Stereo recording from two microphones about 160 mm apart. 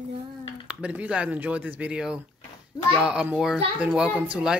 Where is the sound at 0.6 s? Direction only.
10° right (ahead or behind).